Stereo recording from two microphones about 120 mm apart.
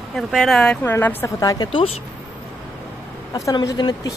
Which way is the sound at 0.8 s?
20° left (ahead or behind).